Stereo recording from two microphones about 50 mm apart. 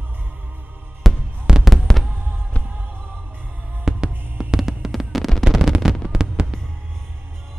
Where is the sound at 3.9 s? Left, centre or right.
Centre.